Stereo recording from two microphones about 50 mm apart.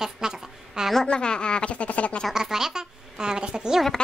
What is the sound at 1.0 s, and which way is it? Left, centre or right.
Speech, centre.